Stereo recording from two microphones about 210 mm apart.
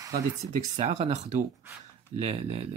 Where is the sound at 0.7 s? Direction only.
30° right (ahead or behind).